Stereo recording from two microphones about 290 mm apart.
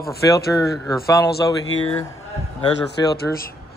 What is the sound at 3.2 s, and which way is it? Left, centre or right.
Speech, left.